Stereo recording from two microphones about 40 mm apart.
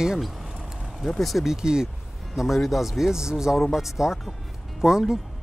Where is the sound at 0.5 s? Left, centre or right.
Right.